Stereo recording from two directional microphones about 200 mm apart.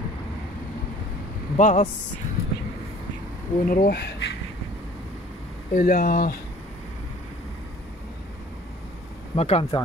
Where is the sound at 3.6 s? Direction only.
50° left (ahead or behind).